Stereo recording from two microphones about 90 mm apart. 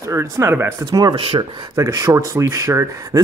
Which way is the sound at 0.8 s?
45° right (ahead or behind).